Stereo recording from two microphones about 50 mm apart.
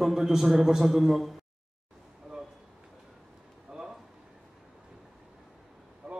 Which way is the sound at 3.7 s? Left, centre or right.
Centre.